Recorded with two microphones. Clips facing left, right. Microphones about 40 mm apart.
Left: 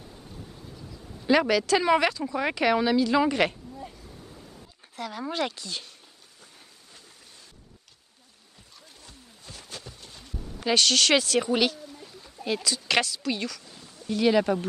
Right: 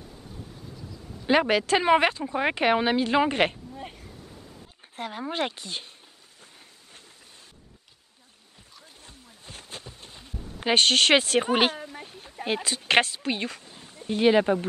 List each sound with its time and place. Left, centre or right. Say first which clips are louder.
1.5 s speech: right 1 dB; right
4.9 s speech: even; right
9.0 s a sound: even; right
12.5 s a woman's voice: right 3 dB; right